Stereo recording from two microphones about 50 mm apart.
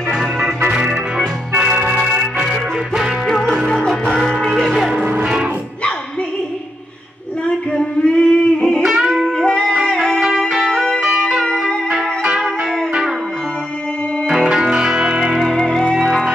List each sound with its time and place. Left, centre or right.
0.1 s organ: centre
1.8 s music: centre
3.3 s music: centre
5.2 s music: centre
7.4 s a sound: centre
8.8 s music: centre
9.9 s music: centre
10.5 s music: centre
14.2 s music: centre
15.4 s music: centre
16.0 s music: centre